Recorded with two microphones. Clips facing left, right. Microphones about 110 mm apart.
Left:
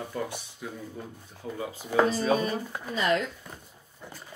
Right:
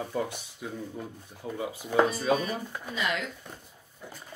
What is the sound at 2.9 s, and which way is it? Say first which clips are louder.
Speech: left 5 dB; 35° left (ahead or behind).